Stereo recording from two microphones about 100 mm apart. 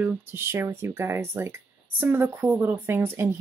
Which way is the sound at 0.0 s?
20° right (ahead or behind).